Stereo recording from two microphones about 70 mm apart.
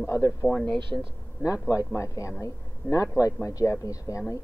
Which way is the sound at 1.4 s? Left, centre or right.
Left.